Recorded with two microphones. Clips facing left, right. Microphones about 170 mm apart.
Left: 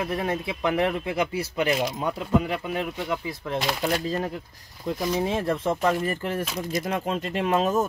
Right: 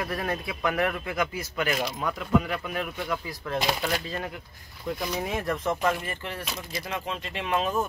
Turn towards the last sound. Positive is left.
turn(degrees=40)  # may be behind; listen again after turning